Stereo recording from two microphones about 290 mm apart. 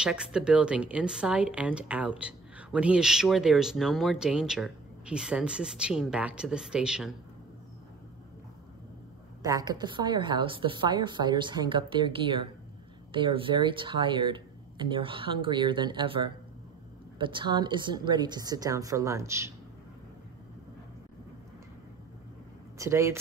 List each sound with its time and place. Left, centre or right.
0.0 s a woman's voice: centre
9.4 s speech: centre
22.8 s speech: centre